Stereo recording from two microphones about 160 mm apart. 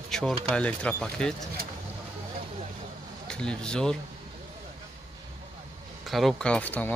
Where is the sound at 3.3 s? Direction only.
5° left (ahead or behind).